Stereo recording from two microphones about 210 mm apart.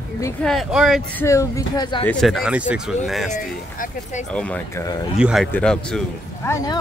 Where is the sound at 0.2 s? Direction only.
5° left (ahead or behind).